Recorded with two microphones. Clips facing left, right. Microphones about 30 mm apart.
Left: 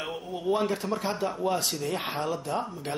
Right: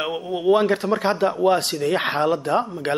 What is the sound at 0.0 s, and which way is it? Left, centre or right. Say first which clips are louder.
Speech: right 9 dB; right.